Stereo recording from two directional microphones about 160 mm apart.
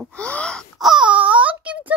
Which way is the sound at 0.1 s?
5° left (ahead or behind).